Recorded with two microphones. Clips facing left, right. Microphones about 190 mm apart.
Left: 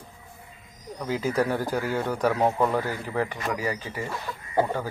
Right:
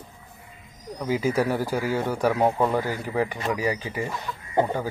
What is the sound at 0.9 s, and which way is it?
Speech, 10° right (ahead or behind).